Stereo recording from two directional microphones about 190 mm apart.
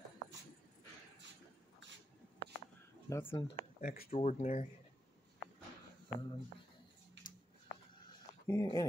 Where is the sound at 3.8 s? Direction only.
50° left (ahead or behind).